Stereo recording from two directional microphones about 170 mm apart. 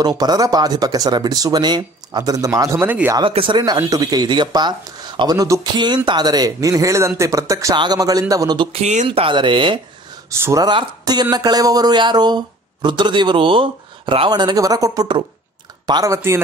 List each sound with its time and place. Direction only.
0.0 s speech: 25° right (ahead or behind)
3.2 s speech: 30° right (ahead or behind)
8.7 s speech: 40° right (ahead or behind)
9.0 s speech: 30° right (ahead or behind)